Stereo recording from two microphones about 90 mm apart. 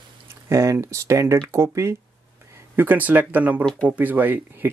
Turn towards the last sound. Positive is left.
turn(degrees=-20)  # may be behind; listen again after turning